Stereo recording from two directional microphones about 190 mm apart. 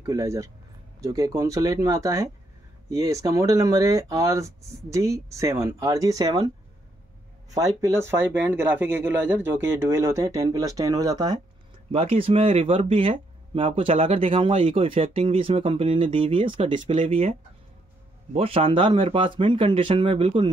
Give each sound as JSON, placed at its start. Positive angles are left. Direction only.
{"t": 0.0, "sound": "speech", "side_deg": -15}
{"t": 7.5, "sound": "speech", "side_deg": -20}
{"t": 11.9, "sound": "speech", "side_deg": -30}